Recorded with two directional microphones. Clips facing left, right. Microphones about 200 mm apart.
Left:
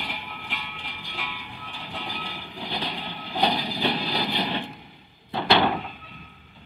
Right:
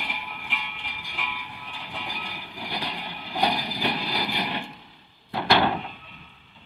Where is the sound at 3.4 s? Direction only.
25° left (ahead or behind).